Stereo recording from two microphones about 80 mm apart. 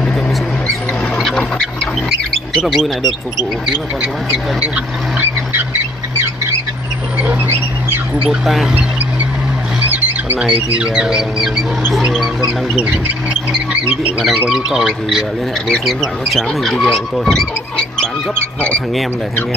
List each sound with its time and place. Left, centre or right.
1.1 s squawk: centre
2.6 s speech: centre
7.4 s bird: right
8.3 s speech: centre
9.8 s wild animals: right
10.4 s speech: centre
12.4 s speech: centre
14.5 s speech: centre
18.3 s speech: left